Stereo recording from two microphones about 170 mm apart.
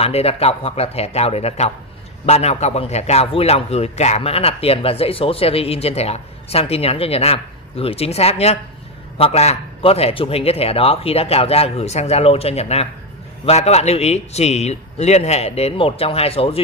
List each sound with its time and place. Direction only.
0.0 s a man's voice: 35° left (ahead or behind)